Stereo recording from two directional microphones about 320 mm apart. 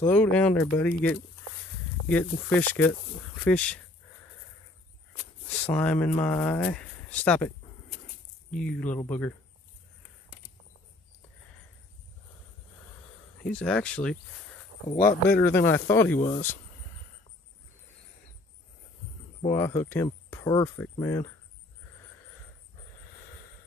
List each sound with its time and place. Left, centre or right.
0.0 s speech: centre
5.8 s speech: centre
13.4 s speech: centre
14.9 s speech: left
15.2 s speech: centre
19.5 s speech: centre